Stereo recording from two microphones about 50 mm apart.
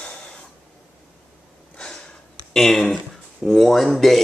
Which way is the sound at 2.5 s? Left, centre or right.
Centre.